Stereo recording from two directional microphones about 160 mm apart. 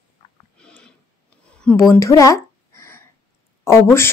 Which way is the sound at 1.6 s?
5° left (ahead or behind).